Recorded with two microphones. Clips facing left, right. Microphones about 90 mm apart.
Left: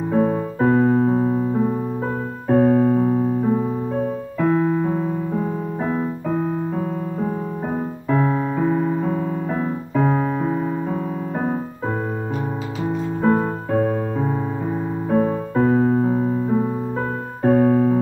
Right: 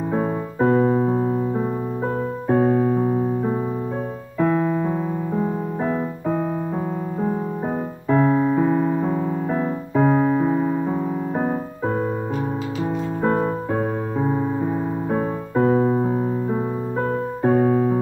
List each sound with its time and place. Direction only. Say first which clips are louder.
0.1 s keyboard: left 7 dB; 10° right (ahead or behind)
2.4 s keyboard: left 3 dB; 15° right (ahead or behind)
4.5 s keyboard: left 3 dB; centre (ahead or behind)
8.1 s keyboard: right 3 dB; 10° right (ahead or behind)
13.2 s music: left 2 dB; centre (ahead or behind)
13.7 s music: left 3 dB; 15° right (ahead or behind)
17.4 s keyboard: left 3 dB; 15° right (ahead or behind)